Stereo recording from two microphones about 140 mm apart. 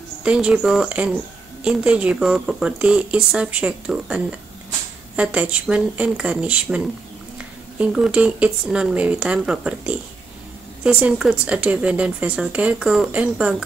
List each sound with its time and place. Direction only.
0.2 s speech: 5° right (ahead or behind)